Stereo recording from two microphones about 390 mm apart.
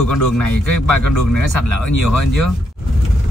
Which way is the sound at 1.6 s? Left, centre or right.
Left.